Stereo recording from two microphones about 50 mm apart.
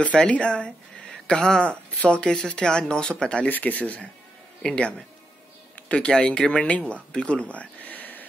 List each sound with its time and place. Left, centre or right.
0.0 s speech: left
3.4 s speech: left
4.6 s speech: centre
6.9 s a sound: left